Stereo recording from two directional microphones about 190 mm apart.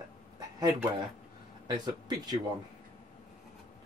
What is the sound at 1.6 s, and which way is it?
Speech, 20° right (ahead or behind).